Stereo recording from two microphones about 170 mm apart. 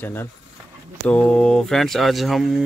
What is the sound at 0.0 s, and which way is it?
Speech, 15° left (ahead or behind).